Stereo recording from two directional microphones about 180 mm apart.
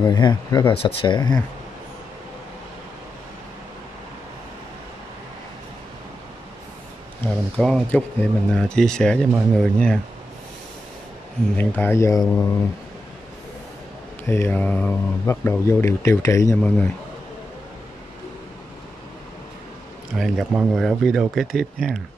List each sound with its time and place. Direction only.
0.0 s speech: 25° left (ahead or behind)
7.5 s speech: 5° left (ahead or behind)
11.5 s speech: 10° left (ahead or behind)
14.2 s speech: 15° left (ahead or behind)
20.2 s speech: centre (ahead or behind)